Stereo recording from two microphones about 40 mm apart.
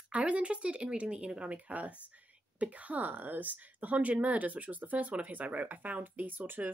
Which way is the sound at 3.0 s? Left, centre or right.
Right.